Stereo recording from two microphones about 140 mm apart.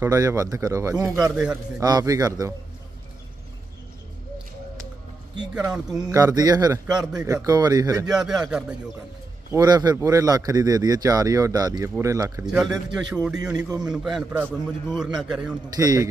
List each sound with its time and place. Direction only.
0.0 s speech: 20° right (ahead or behind)
1.3 s a man's voice: 5° right (ahead or behind)
1.8 s speech: 25° right (ahead or behind)
5.5 s a man's voice: 5° right (ahead or behind)
6.0 s speech: 25° right (ahead or behind)
7.0 s a man's voice: 5° right (ahead or behind)
7.4 s speech: 25° right (ahead or behind)
8.1 s a man's voice: 5° right (ahead or behind)
9.5 s speech: 25° right (ahead or behind)
12.4 s a man's voice: 5° right (ahead or behind)
15.7 s speech: 25° right (ahead or behind)